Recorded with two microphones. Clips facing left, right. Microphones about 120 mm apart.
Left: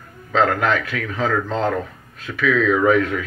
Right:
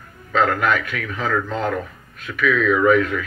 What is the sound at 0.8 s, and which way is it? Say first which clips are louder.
Speech: left 3 dB; 30° left (ahead or behind).